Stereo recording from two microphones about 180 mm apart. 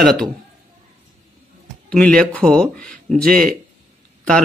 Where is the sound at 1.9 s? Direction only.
5° left (ahead or behind).